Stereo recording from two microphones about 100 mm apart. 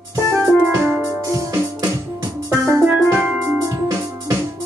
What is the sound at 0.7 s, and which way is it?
Music, 15° right (ahead or behind).